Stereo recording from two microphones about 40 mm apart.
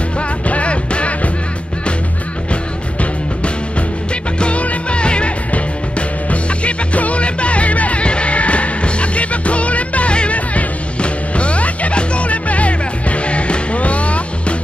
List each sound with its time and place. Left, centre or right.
0.5 s music: left
4.4 s music: left